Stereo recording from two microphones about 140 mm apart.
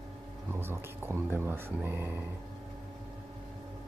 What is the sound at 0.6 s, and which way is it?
Speech, 15° right (ahead or behind).